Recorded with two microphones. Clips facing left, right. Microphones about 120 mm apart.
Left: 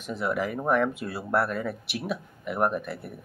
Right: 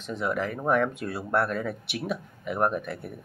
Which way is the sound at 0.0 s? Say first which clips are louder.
Even; 5° left (ahead or behind).